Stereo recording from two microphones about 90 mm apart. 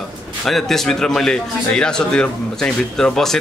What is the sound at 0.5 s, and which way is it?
A man's voice, 5° left (ahead or behind).